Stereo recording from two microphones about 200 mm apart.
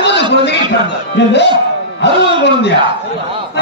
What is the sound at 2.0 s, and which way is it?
Music, 60° left (ahead or behind).